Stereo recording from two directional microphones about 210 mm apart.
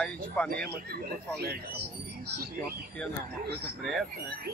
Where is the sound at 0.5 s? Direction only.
45° right (ahead or behind).